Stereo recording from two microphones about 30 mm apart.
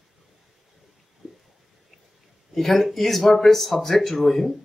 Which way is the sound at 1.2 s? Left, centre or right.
Right.